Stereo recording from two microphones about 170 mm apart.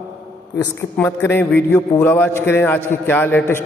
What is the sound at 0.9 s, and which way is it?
A man's voice, 10° left (ahead or behind).